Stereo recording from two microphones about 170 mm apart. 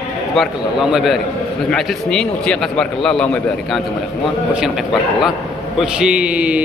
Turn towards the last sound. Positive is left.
turn(degrees=-10)  # may be behind; listen again after turning